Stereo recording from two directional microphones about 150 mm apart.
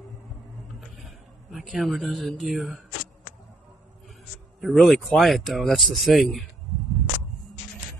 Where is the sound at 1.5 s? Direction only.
Centre (ahead or behind).